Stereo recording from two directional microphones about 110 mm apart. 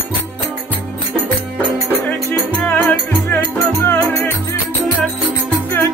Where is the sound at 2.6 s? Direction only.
15° left (ahead or behind).